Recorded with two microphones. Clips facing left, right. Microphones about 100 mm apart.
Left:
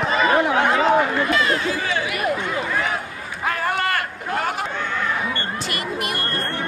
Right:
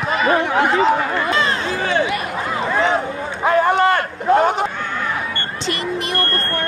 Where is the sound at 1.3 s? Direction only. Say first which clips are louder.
Right 1 dB; 30° right (ahead or behind).